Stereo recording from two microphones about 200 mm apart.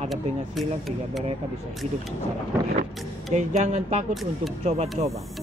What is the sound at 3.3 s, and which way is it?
Speech, 35° right (ahead or behind).